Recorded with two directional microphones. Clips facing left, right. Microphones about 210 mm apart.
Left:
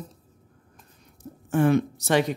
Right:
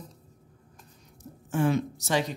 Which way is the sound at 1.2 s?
60° left (ahead or behind).